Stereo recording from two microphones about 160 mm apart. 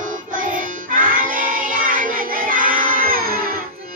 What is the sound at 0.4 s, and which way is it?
Music, 60° right (ahead or behind).